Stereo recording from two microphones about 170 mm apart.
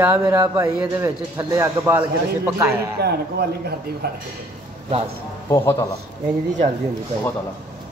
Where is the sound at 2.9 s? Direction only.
70° right (ahead or behind).